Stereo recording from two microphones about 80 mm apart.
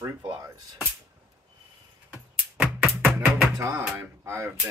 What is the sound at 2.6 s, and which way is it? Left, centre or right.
Music, centre.